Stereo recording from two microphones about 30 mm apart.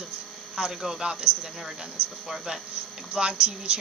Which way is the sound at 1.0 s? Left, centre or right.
Right.